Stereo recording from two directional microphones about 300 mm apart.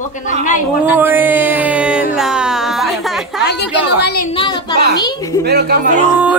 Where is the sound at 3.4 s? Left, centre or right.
Left.